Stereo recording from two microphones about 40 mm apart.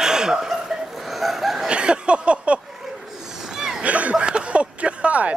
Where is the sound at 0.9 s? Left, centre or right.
Centre.